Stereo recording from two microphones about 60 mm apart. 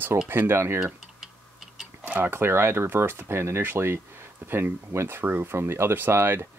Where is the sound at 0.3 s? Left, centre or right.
Right.